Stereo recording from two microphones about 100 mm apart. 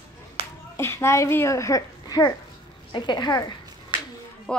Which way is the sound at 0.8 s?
25° left (ahead or behind).